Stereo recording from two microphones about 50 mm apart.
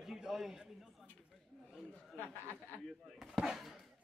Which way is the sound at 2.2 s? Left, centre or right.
Left.